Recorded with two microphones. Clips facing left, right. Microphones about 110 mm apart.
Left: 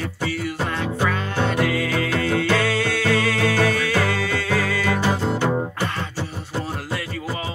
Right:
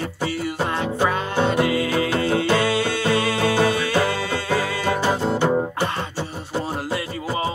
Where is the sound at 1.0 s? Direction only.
25° right (ahead or behind).